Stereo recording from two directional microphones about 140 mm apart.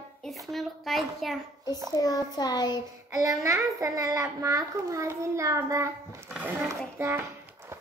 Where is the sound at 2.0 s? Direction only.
25° left (ahead or behind).